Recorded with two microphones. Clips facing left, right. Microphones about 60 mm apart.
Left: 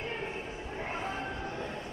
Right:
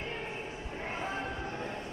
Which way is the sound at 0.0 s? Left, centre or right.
Centre.